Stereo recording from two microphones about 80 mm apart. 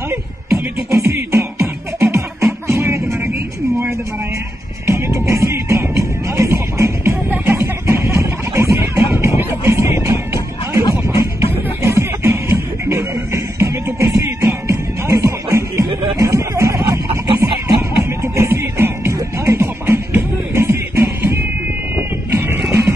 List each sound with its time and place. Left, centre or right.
0.1 s music: right
4.8 s music: right
7.2 s a sound: right
9.4 s music: right
16.9 s a sound: right
18.2 s music: right